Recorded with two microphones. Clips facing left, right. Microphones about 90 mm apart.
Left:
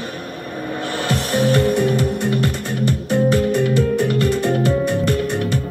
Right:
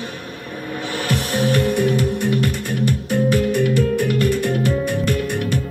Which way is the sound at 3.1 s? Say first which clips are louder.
Left 2 dB; 20° left (ahead or behind).